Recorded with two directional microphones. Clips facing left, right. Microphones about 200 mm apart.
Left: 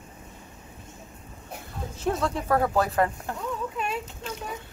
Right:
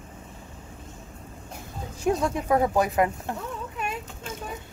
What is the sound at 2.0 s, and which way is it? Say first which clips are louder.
Speech: right 2 dB; 15° right (ahead or behind).